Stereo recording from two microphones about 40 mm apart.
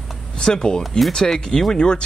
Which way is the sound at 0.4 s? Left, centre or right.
Centre.